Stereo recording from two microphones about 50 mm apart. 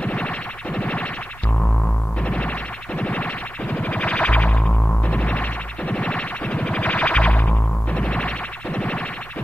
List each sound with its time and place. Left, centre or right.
0.0 s music: left
2.2 s music: left